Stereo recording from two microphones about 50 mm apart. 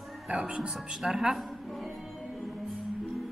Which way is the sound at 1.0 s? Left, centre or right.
Centre.